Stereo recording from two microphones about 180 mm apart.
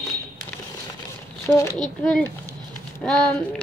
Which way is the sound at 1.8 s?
5° left (ahead or behind).